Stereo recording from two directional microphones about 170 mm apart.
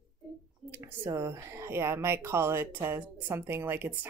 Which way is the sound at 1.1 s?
15° right (ahead or behind).